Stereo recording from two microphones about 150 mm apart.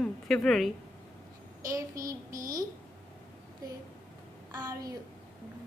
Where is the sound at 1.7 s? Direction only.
20° right (ahead or behind).